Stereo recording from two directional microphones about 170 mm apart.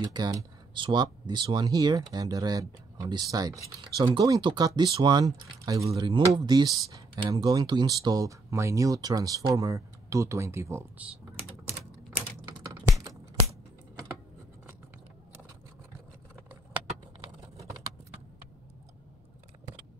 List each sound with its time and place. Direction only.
0.0 s speech: 25° right (ahead or behind)
12.5 s typewriter: 20° right (ahead or behind)